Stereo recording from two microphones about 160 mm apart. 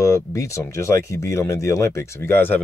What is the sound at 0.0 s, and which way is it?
Speech, 20° left (ahead or behind).